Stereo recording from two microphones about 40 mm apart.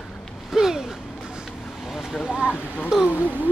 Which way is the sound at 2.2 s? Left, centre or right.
Centre.